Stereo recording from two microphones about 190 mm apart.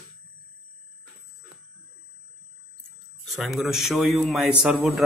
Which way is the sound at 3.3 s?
Centre (ahead or behind).